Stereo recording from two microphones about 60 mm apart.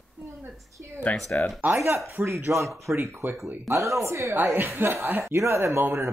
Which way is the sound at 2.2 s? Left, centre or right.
Right.